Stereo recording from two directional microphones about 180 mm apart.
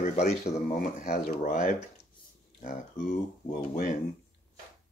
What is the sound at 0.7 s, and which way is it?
Speech, 45° left (ahead or behind).